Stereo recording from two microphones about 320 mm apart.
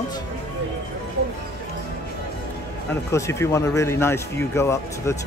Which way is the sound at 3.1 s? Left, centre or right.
Centre.